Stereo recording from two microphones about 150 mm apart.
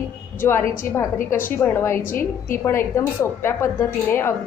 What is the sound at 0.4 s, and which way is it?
A woman's voice, 15° left (ahead or behind).